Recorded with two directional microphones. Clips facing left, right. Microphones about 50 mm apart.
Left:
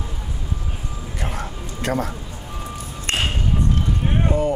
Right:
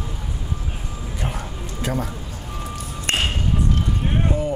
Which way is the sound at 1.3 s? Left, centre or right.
Left.